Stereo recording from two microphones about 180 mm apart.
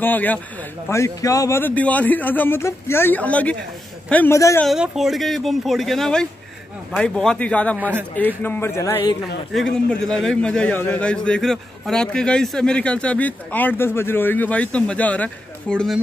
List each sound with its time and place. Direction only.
0.0 s a man's voice: 10° left (ahead or behind)
4.6 s a man's voice: 5° right (ahead or behind)
7.7 s a man's voice: 10° right (ahead or behind)
8.2 s a man's voice: 10° left (ahead or behind)
9.5 s a man's voice: 5° left (ahead or behind)